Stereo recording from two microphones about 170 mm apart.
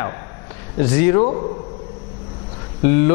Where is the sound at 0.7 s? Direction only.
15° left (ahead or behind).